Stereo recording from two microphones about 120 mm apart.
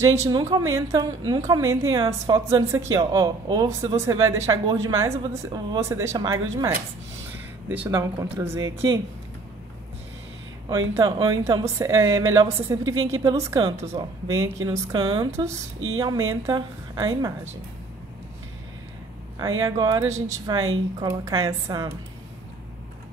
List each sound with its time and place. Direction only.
0.0 s a woman's voice: 25° right (ahead or behind)
7.6 s speech: 15° right (ahead or behind)
7.9 s a woman's voice: 25° right (ahead or behind)
10.7 s a woman's voice: 30° right (ahead or behind)
19.3 s a woman's voice: 30° right (ahead or behind)